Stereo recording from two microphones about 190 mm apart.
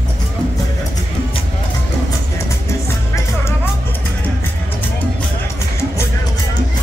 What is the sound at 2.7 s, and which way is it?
Music, 15° left (ahead or behind).